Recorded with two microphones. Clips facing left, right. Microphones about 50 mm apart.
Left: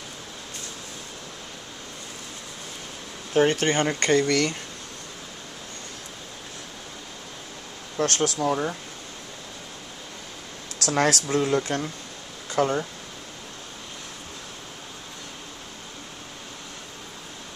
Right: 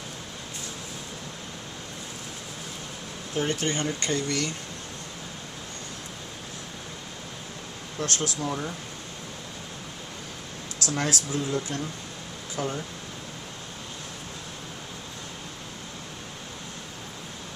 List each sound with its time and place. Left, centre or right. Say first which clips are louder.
3.3 s speech: left 7 dB; left
3.8 s speech: left 7 dB; left
8.0 s speech: left 6 dB; left
8.5 s speech: left 6 dB; left
10.8 s speech: left 6 dB; left